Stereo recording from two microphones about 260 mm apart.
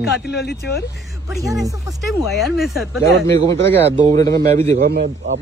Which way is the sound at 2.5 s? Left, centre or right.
Centre.